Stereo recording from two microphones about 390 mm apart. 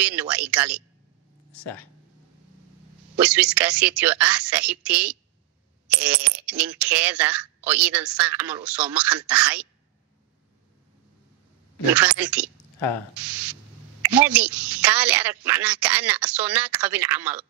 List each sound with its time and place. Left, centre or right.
0.0 s speech: centre
1.5 s speech: left
3.2 s speech: centre
11.9 s speech: centre